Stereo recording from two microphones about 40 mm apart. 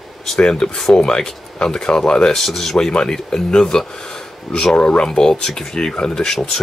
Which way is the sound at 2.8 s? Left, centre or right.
Left.